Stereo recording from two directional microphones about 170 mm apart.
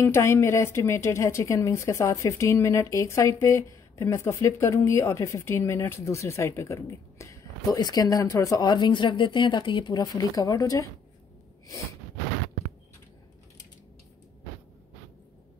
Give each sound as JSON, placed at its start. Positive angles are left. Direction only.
{"t": 0.0, "sound": "a woman's voice", "side_deg": 15}